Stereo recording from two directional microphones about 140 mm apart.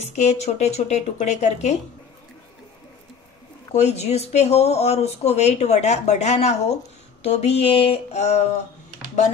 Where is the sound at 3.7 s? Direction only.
50° left (ahead or behind).